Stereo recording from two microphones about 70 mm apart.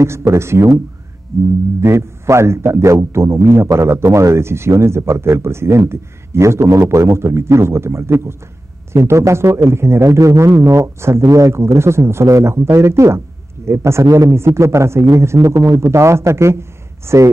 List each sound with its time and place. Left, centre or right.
0.0 s a man's voice: right